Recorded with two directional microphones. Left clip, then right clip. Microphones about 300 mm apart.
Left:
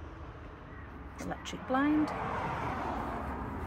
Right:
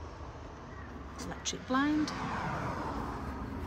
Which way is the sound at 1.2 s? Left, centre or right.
Centre.